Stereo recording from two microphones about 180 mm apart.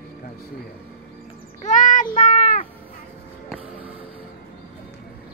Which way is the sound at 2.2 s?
45° left (ahead or behind).